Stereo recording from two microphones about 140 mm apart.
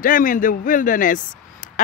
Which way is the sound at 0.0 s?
70° left (ahead or behind).